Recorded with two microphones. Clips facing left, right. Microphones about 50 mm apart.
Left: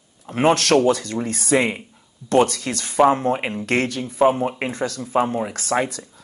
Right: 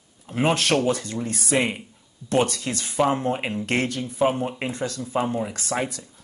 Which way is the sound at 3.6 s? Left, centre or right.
Left.